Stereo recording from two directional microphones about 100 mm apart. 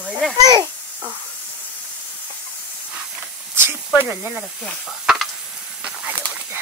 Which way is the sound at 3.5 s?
20° right (ahead or behind).